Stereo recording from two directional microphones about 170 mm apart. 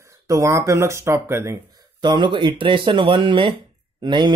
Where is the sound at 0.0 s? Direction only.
20° right (ahead or behind).